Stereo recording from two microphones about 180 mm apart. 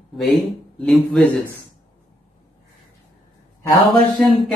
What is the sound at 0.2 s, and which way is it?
Speech, centre (ahead or behind).